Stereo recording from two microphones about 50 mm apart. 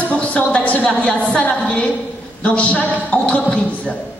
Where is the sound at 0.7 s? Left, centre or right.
Left.